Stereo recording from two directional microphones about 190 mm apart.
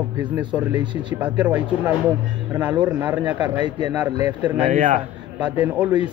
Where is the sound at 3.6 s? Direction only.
25° right (ahead or behind).